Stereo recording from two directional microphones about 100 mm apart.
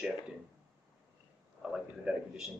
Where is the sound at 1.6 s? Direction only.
5° right (ahead or behind).